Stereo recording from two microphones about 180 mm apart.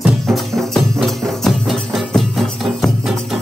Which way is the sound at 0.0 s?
Centre (ahead or behind).